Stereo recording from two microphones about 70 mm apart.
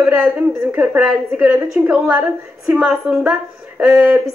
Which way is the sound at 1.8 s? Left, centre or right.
Centre.